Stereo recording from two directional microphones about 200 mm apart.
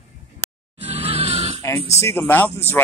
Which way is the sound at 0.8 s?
30° right (ahead or behind).